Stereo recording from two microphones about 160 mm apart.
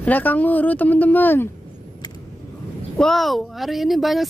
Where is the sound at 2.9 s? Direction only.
Centre (ahead or behind).